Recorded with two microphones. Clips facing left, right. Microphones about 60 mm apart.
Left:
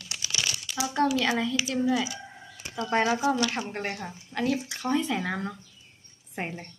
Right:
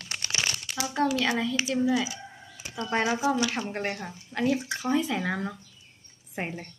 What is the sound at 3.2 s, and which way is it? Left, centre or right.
Speech, centre.